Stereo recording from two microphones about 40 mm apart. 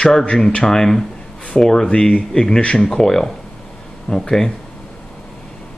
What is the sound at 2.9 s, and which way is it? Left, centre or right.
Speech, centre.